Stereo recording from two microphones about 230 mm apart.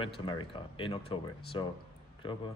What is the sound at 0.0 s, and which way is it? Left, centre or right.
Speech, left.